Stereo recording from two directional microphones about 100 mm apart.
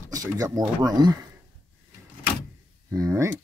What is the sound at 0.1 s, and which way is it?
Speech, 35° right (ahead or behind).